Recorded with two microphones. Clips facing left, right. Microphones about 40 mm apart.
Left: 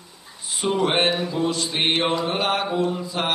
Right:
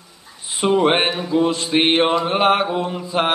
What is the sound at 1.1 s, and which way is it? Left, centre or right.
Music, centre.